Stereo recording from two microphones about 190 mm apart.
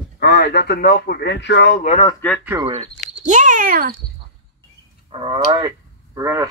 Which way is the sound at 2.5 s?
15° right (ahead or behind).